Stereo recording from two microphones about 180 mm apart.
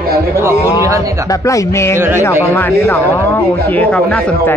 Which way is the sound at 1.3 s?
20° left (ahead or behind).